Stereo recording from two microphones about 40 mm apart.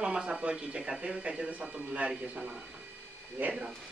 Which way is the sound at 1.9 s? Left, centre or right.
Right.